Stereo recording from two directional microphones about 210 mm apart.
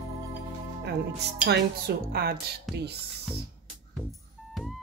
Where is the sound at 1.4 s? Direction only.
50° right (ahead or behind).